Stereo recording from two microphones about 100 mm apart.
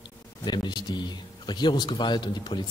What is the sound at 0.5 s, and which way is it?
A man's voice, 45° left (ahead or behind).